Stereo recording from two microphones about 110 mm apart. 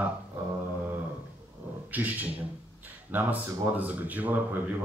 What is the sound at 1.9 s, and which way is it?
A man's voice, 15° right (ahead or behind).